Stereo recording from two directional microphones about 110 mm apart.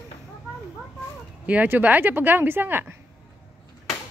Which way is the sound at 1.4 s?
15° right (ahead or behind).